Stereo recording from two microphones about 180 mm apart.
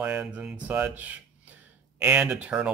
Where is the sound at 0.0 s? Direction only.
10° right (ahead or behind).